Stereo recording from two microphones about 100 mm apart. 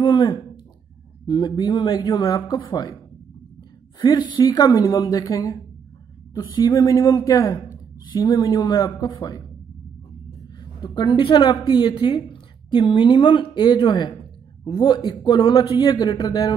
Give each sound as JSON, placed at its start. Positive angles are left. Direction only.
{"t": 0.0, "sound": "a sound", "side_deg": 50}
{"t": 1.2, "sound": "speech", "side_deg": 50}
{"t": 4.0, "sound": "a woman's voice", "side_deg": 50}
{"t": 8.2, "sound": "speech", "side_deg": 45}
{"t": 10.6, "sound": "speech", "side_deg": 50}
{"t": 11.9, "sound": "speech", "side_deg": 60}